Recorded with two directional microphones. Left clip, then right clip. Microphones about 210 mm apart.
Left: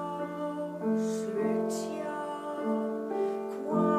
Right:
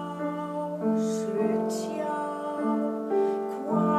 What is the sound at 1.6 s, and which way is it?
Music, 20° right (ahead or behind).